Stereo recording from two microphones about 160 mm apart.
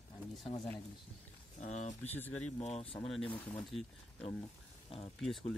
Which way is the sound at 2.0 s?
10° left (ahead or behind).